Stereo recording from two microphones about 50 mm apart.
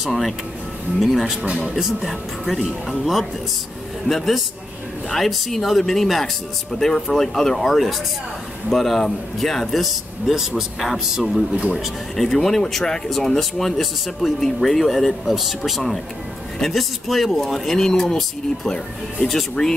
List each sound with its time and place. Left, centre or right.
0.0 s speech: centre
1.5 s speech: centre
2.0 s speech: centre
5.1 s speech: centre
10.8 s speech: centre